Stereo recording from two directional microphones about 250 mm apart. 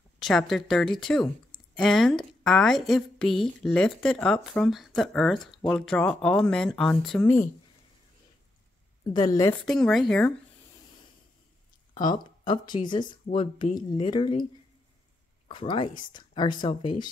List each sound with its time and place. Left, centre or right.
0.2 s a woman's voice: centre
9.0 s speech: centre
9.7 s a woman's voice: centre
11.9 s speech: centre
15.4 s speech: centre